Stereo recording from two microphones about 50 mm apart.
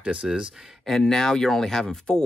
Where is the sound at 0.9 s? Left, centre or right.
Centre.